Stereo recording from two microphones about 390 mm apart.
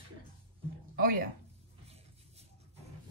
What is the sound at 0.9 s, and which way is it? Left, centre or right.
Speech, right.